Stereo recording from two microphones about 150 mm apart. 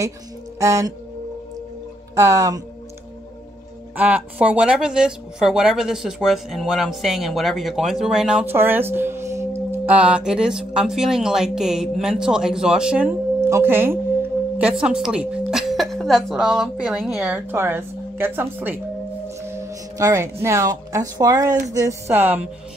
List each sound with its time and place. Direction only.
0.6 s speech: 20° right (ahead or behind)
2.1 s speech: 20° right (ahead or behind)
3.9 s speech: 10° right (ahead or behind)